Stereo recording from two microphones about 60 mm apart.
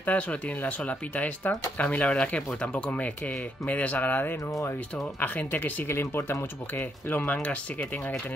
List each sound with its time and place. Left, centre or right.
0.0 s speech: left
5.9 s speech: left